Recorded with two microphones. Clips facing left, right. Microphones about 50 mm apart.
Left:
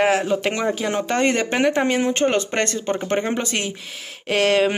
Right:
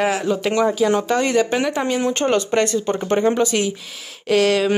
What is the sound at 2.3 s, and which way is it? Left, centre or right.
Speech, left.